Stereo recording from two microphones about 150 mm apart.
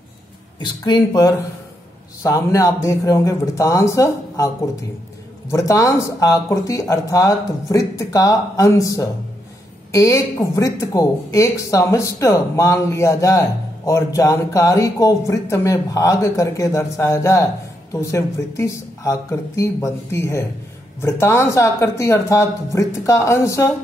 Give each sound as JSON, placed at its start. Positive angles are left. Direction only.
{"t": 0.6, "sound": "speech", "side_deg": 30}
{"t": 5.5, "sound": "speech", "side_deg": 20}